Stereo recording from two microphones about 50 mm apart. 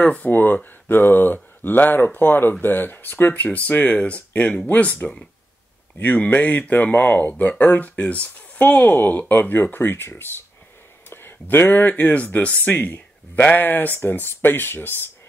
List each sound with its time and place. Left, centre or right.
0.0 s speech: left
5.9 s speech: left
11.1 s a sound: left
11.9 s speech: left